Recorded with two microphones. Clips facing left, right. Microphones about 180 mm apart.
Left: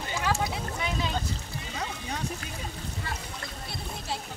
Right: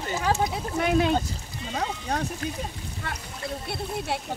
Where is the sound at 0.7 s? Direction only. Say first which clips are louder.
Right 11 dB; 55° right (ahead or behind).